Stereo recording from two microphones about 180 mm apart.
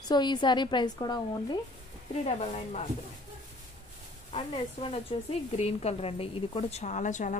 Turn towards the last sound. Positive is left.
turn(degrees=45)  # may be behind; listen again after turning